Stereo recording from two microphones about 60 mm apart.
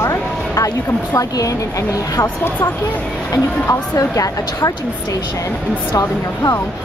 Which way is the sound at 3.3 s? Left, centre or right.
Left.